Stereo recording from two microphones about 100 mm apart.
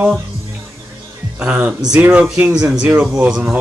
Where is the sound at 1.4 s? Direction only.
10° right (ahead or behind).